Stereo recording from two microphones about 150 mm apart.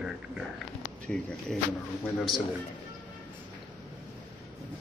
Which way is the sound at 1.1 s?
5° left (ahead or behind).